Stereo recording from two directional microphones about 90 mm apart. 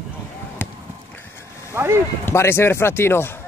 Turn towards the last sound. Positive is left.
turn(degrees=25)  # may be behind; listen again after turning